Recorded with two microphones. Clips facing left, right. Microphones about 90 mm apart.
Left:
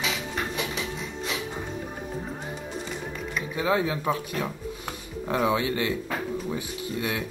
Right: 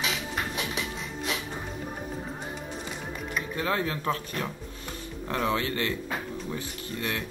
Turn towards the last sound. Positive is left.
turn(degrees=15)  # may be behind; listen again after turning